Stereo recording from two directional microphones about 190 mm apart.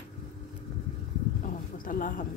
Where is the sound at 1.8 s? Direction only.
45° left (ahead or behind).